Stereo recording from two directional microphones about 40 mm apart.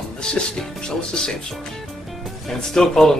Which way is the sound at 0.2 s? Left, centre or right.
Centre.